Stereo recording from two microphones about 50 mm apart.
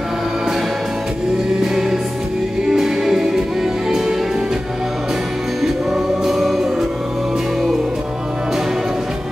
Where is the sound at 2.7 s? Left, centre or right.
Centre.